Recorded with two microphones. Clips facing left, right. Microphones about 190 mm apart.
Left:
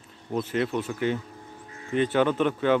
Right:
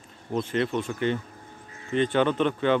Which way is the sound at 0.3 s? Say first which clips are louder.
Even; 5° left (ahead or behind).